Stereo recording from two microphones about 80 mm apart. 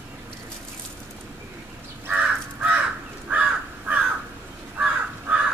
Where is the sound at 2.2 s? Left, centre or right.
Centre.